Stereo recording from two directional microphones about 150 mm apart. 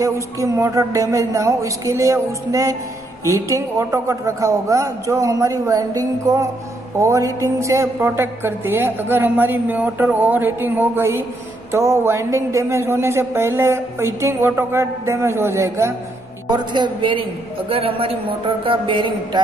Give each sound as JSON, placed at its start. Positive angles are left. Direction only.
{"t": 0.0, "sound": "a woman's voice", "side_deg": -20}
{"t": 16.4, "sound": "a man's voice", "side_deg": -30}